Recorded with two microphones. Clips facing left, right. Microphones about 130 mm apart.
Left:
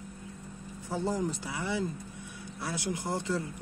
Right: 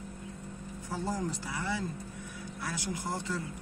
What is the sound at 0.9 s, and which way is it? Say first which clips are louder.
Speech: left 3 dB; 20° left (ahead or behind).